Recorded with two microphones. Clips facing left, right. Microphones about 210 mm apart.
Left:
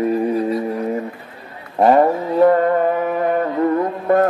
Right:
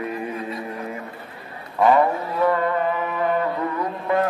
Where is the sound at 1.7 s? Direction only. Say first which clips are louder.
Left 4 dB; 40° left (ahead or behind).